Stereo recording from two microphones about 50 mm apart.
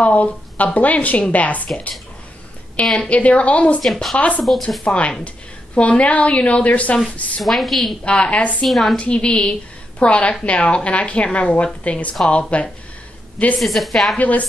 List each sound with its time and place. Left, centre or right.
0.0 s a woman's voice: left
3.1 s a woman's voice: left
3.8 s a woman's voice: centre
4.8 s a woman's voice: left
7.4 s a woman's voice: centre
8.0 s a woman's voice: left
8.6 s a woman's voice: centre
8.9 s a woman's voice: left
13.6 s a woman's voice: centre
14.1 s a woman's voice: left